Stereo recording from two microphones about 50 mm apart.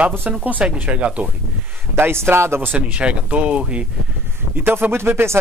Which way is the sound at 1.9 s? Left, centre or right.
Right.